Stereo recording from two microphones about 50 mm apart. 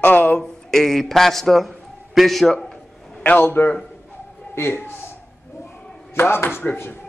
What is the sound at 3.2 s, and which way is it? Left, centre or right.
A man's voice, left.